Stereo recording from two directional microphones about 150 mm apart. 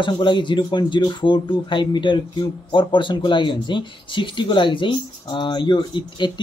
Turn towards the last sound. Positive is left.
turn(degrees=30)  # may be behind; listen again after turning